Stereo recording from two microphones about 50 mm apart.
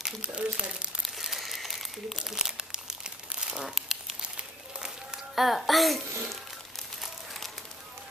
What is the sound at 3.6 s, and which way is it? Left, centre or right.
Crumpling, centre.